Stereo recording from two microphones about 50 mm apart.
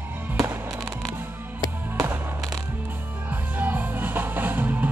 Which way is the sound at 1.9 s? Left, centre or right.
Right.